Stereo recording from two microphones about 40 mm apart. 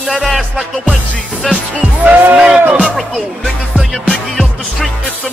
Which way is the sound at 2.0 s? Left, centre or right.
Right.